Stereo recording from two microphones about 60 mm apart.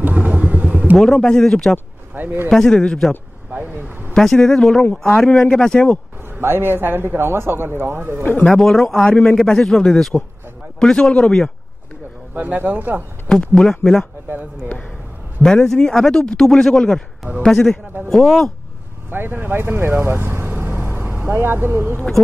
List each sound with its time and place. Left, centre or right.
0.0 s vehicle: right
0.9 s speech: centre
2.1 s a man's voice: right
2.5 s speech: centre
3.5 s a sound: right
4.1 s speech: centre
6.4 s a man's voice: right
8.2 s speech: left
8.5 s speech: centre
12.4 s speech: right
13.3 s speech: centre
15.4 s speech: centre
19.0 s vehicle: right
21.3 s a man's voice: right